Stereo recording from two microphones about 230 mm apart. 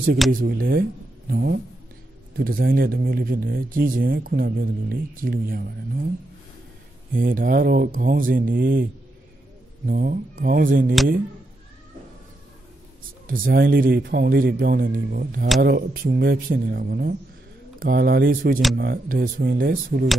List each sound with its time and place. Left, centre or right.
0.3 s speech: right
7.2 s speech: right
9.8 s speech: right
13.3 s speech: right